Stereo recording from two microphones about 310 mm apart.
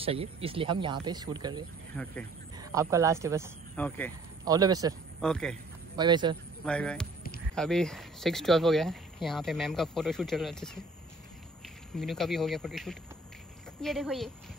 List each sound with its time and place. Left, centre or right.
0.0 s speech: centre
2.0 s speech: centre
2.5 s speech: centre
3.7 s speech: centre
4.5 s speech: centre
5.2 s speech: centre
5.9 s speech: centre
6.6 s speech: centre
11.9 s speech: centre